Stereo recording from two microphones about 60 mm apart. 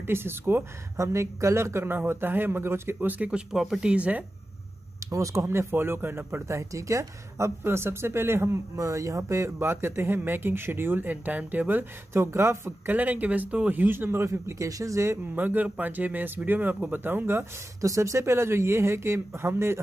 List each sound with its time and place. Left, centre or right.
0.0 s speech: right
0.9 s speech: right
3.3 s speech: centre
3.9 s speech: right
5.0 s speech: right
8.7 s speech: right
9.6 s speech: right
12.1 s speech: right
12.9 s speech: right
14.2 s speech: right
14.7 s speech: right
15.3 s speech: right
17.7 s speech: right